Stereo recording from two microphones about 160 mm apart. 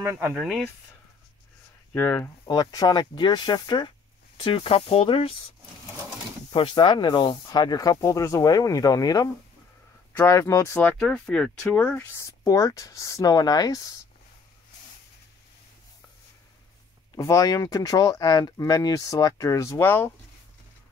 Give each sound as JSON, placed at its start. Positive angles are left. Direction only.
{"t": 0.0, "sound": "speech", "side_deg": -20}
{"t": 0.3, "sound": "speech", "side_deg": 0}
{"t": 2.0, "sound": "speech", "side_deg": 10}
{"t": 2.4, "sound": "speech", "side_deg": 25}
{"t": 6.5, "sound": "speech", "side_deg": 30}
{"t": 17.1, "sound": "speech", "side_deg": 20}